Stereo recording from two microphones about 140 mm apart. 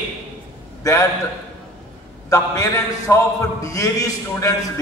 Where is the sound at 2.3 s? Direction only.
20° left (ahead or behind).